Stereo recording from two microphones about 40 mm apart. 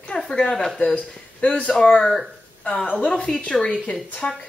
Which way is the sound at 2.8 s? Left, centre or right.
Left.